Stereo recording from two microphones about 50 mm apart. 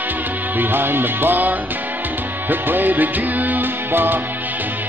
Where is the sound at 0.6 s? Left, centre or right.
Right.